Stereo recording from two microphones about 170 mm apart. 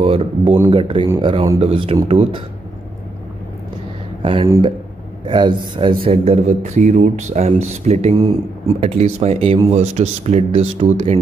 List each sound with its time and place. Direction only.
0.0 s a man's voice: 35° right (ahead or behind)
4.2 s a man's voice: 30° right (ahead or behind)